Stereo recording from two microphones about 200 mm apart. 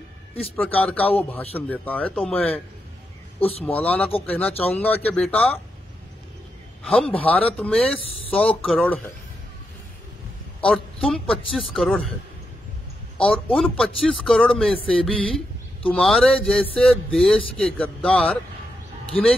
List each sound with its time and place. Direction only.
0.6 s speech: 10° left (ahead or behind)
3.3 s speech: 30° left (ahead or behind)
3.6 s speech: 10° left (ahead or behind)
6.8 s a man's voice: 5° left (ahead or behind)
10.6 s a man's voice: 5° left (ahead or behind)
13.6 s a man's voice: 5° left (ahead or behind)